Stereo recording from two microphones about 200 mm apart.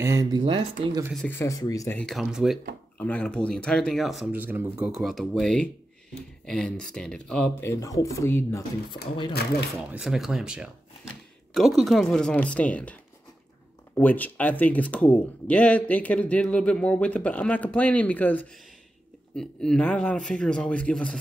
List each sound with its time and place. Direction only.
0.0 s speech: 15° right (ahead or behind)
1.4 s speech: 15° left (ahead or behind)
2.0 s speech: centre (ahead or behind)
9.8 s speech: 5° right (ahead or behind)